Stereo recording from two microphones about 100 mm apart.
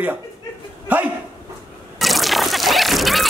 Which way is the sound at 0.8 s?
15° right (ahead or behind).